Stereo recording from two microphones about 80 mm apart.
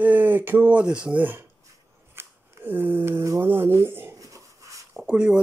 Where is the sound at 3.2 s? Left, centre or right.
Right.